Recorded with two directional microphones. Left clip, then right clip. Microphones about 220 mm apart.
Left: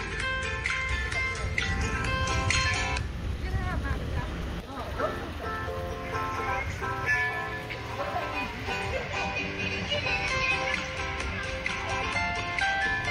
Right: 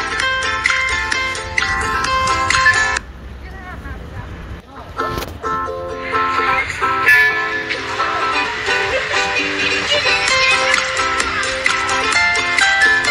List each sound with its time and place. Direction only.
0.0 s music: 45° right (ahead or behind)
6.0 s music: 45° right (ahead or behind)